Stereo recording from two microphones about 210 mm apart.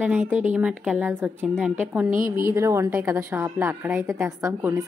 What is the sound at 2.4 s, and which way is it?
A woman's voice, 15° right (ahead or behind).